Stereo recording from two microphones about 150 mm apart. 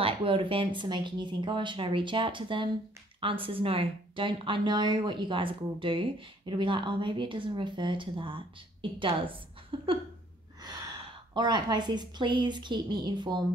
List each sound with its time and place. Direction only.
0.0 s speech: 35° right (ahead or behind)
11.3 s a woman's voice: 30° right (ahead or behind)